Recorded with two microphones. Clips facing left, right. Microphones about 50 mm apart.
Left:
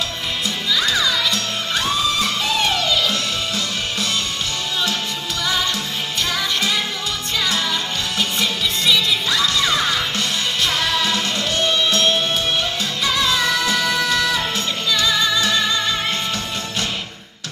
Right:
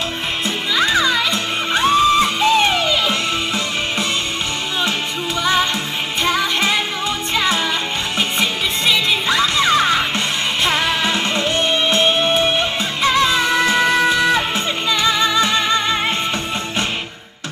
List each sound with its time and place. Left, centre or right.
0.7 s music: right
5.4 s music: right